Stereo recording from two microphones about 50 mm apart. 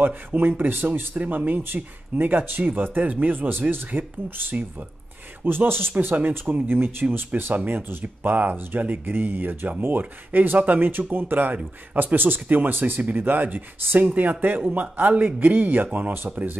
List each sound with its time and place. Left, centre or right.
0.4 s speech: right
5.4 s speech: right
13.9 s speech: right